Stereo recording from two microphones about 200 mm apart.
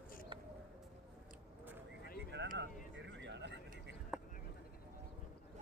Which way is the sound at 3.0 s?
60° right (ahead or behind).